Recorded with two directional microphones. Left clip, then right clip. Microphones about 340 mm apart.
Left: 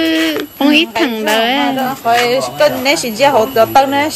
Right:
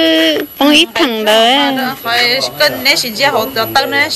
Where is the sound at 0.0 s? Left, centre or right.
Centre.